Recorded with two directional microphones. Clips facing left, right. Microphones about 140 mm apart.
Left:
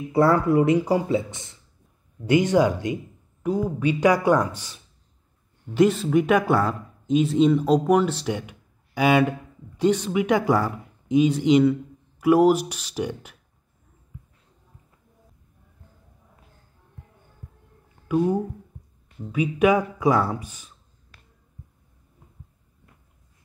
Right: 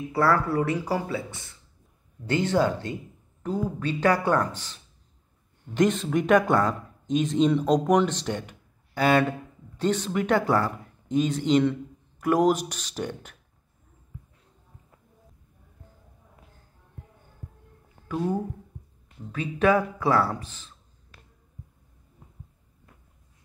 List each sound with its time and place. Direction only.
0.1 s speech: 20° left (ahead or behind)
5.8 s speech: 5° left (ahead or behind)
18.0 s speech: 10° left (ahead or behind)